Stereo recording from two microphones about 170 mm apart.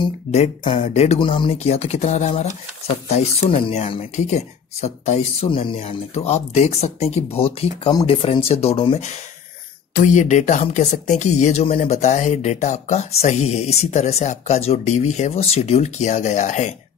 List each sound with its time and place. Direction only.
0.3 s speech: 40° left (ahead or behind)
4.0 s speech: 45° left (ahead or behind)
9.9 s speech: 45° left (ahead or behind)